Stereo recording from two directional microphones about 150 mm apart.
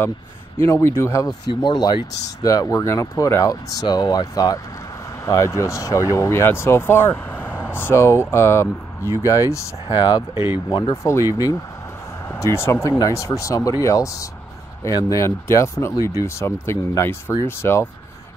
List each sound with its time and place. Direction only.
0.6 s speech: 15° left (ahead or behind)
10.3 s speech: 15° right (ahead or behind)
10.7 s speech: 20° left (ahead or behind)